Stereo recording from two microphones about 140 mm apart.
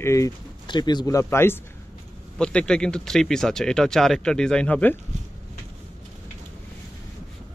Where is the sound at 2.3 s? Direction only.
5° left (ahead or behind).